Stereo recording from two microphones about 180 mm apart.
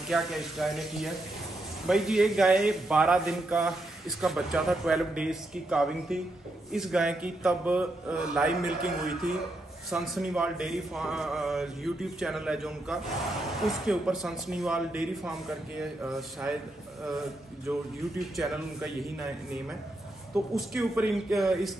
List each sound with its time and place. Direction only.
0.1 s speech: centre (ahead or behind)
18.3 s speech: centre (ahead or behind)
20.5 s speech: 5° right (ahead or behind)